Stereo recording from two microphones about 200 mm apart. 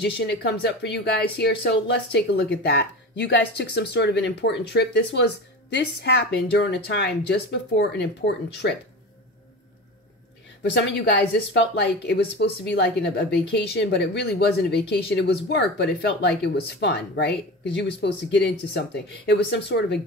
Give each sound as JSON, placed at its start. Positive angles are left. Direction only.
{"t": 0.0, "sound": "speech", "side_deg": 60}
{"t": 10.6, "sound": "speech", "side_deg": 60}